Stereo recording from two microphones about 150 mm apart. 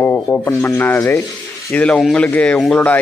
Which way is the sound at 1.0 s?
20° left (ahead or behind).